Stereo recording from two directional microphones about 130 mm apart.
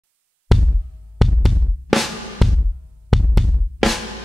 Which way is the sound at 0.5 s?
Centre (ahead or behind).